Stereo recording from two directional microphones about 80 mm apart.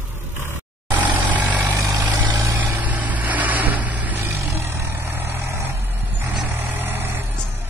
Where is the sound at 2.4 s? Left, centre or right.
Right.